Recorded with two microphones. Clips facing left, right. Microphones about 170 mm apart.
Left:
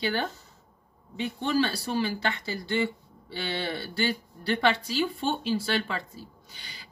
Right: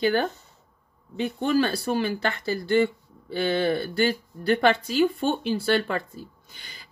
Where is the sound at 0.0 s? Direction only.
50° right (ahead or behind).